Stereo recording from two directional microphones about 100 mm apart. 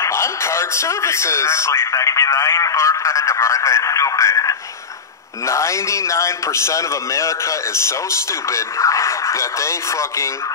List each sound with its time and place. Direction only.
0.0 s a man's voice: 30° left (ahead or behind)